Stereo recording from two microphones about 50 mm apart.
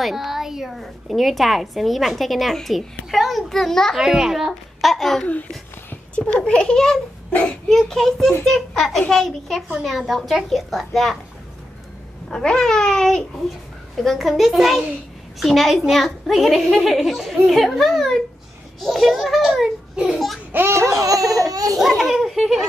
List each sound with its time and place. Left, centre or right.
0.0 s a woman's voice: centre
3.9 s a woman's voice: centre
6.1 s a woman's voice: centre
12.3 s a woman's voice: centre
20.5 s speech: right
21.3 s a woman's voice: centre